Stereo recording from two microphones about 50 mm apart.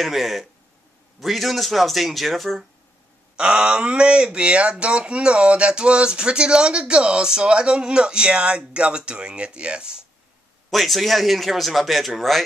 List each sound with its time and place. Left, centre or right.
0.0 s a man's voice: centre
3.3 s speech: centre
10.7 s a man's voice: centre